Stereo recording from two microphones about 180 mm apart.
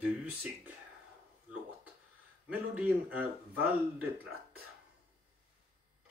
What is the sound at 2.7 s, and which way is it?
Speech, 10° right (ahead or behind).